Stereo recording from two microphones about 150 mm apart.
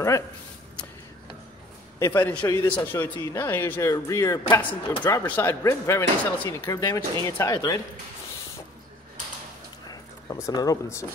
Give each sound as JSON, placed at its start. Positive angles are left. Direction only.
{"t": 2.0, "sound": "speech", "side_deg": 15}
{"t": 2.4, "sound": "speech", "side_deg": 25}
{"t": 2.7, "sound": "speech", "side_deg": 15}
{"t": 9.8, "sound": "a sound", "side_deg": 20}